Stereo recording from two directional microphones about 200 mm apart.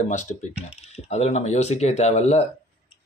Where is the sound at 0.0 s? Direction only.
35° left (ahead or behind).